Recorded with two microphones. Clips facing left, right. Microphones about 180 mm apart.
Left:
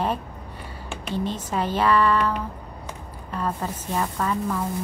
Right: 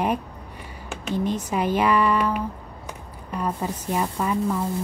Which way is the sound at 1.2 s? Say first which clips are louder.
Right 3 dB; 10° right (ahead or behind).